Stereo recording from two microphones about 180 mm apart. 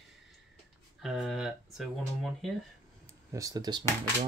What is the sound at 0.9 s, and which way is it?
Speech, centre (ahead or behind).